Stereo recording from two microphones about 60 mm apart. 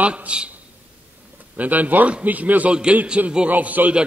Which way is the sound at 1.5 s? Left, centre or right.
Right.